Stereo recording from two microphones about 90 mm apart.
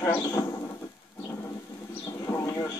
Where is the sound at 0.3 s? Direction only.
35° left (ahead or behind).